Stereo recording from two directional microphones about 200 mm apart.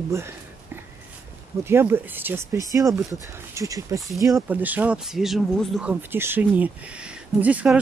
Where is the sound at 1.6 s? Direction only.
10° right (ahead or behind).